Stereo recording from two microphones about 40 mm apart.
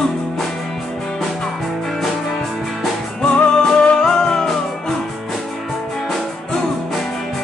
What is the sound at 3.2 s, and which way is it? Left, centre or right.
Music, left.